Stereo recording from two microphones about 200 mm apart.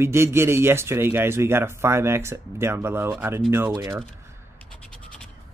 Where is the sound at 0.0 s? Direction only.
10° right (ahead or behind).